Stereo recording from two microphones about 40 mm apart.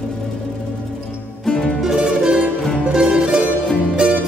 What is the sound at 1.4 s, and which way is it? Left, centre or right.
Music, centre.